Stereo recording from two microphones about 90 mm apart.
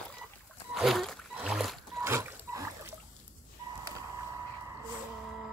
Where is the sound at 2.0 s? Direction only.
35° right (ahead or behind).